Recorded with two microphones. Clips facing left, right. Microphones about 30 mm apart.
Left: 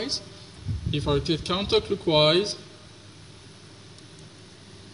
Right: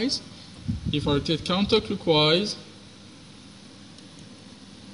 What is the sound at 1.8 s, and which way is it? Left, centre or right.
Speech, centre.